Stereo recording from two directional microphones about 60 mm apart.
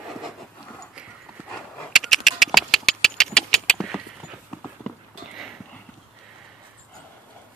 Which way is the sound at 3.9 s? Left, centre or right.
Centre.